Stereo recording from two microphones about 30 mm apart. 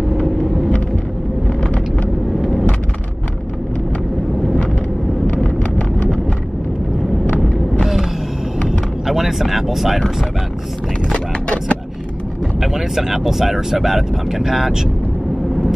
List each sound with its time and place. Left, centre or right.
5.4 s vehicle: left
7.8 s mechanisms: centre
8.6 s vehicle: centre
9.4 s speech: centre
12.5 s speech: centre